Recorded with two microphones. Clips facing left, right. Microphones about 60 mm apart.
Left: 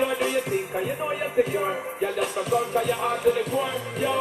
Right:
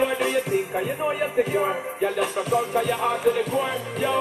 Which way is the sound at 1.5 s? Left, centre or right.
Centre.